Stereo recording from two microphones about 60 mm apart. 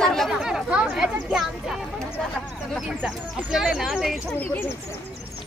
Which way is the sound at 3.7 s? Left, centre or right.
Centre.